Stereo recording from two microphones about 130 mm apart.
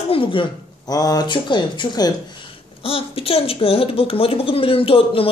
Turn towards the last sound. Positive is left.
turn(degrees=45)  # may be behind; listen again after turning